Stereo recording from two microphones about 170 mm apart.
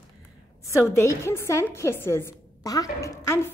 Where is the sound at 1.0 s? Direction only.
15° left (ahead or behind).